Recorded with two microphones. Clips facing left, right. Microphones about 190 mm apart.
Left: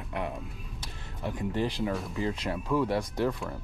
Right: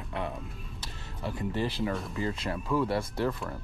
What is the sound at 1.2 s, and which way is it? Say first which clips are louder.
Speech: left 1 dB; 15° left (ahead or behind).